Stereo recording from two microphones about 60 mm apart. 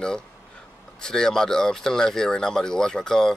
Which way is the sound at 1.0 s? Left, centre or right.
Centre.